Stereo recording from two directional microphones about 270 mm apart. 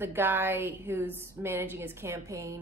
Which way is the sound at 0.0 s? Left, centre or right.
Centre.